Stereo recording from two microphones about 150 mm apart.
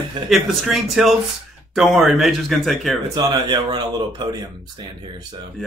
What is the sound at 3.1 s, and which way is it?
A man's voice, 25° right (ahead or behind).